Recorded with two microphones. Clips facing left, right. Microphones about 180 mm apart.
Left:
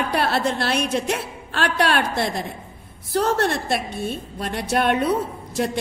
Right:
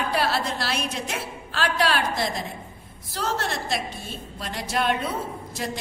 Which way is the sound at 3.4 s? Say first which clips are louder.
Left 6 dB; 65° left (ahead or behind).